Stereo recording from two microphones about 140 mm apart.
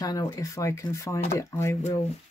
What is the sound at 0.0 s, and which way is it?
Speech, 25° left (ahead or behind).